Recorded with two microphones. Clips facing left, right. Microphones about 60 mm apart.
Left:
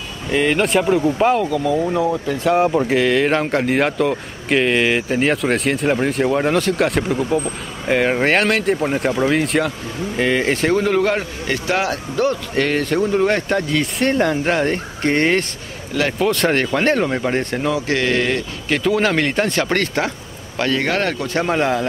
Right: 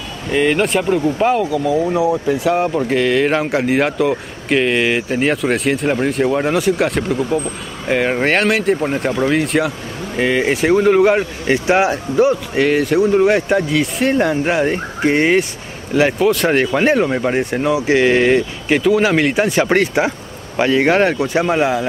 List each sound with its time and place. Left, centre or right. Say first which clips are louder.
0.3 s speech: right 1 dB; centre
2.4 s speech: even; centre
15.9 s speech: right 6 dB; centre
16.2 s speech: right 3 dB; centre
18.8 s speech: right 3 dB; centre